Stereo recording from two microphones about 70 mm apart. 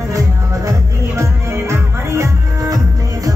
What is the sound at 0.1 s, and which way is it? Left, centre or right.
Music, right.